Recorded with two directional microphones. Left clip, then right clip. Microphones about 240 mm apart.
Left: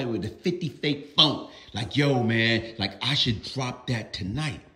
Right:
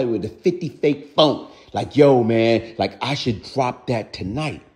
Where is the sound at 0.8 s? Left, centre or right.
Centre.